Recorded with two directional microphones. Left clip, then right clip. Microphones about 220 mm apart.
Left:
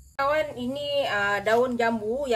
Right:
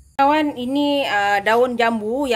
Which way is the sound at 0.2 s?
45° right (ahead or behind).